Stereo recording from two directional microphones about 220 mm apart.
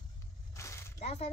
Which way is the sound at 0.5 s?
15° left (ahead or behind).